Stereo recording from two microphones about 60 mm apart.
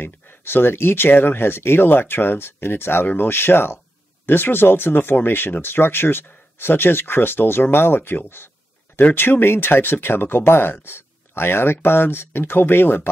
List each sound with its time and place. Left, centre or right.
0.0 s speech: left